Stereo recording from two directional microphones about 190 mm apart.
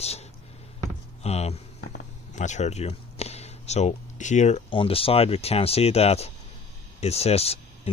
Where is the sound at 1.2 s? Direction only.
35° left (ahead or behind).